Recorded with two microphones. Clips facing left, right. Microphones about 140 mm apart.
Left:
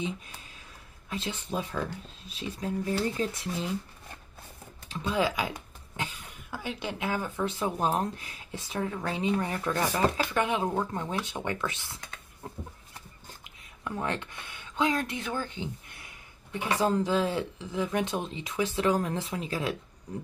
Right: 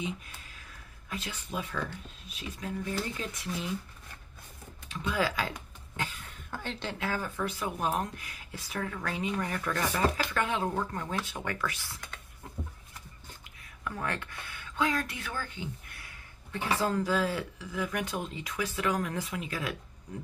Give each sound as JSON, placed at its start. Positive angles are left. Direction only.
{"t": 0.0, "sound": "a sound", "side_deg": 30}
{"t": 1.1, "sound": "speech", "side_deg": 25}
{"t": 4.8, "sound": "speech", "side_deg": 25}
{"t": 13.4, "sound": "speech", "side_deg": 25}